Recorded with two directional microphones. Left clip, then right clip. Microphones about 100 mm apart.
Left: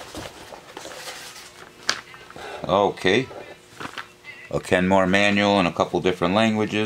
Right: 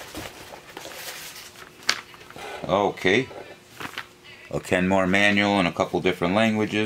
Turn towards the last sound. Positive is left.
turn(degrees=20)  # may be behind; listen again after turning